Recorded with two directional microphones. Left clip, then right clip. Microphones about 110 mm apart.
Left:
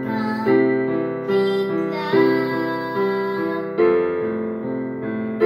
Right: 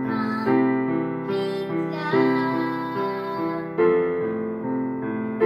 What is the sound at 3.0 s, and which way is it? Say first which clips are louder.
Music: left 4 dB; 25° left (ahead or behind).